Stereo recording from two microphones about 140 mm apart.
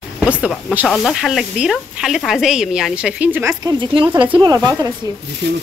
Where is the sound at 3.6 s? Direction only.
35° right (ahead or behind).